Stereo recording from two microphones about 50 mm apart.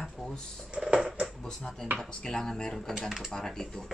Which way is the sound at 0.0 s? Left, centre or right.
Centre.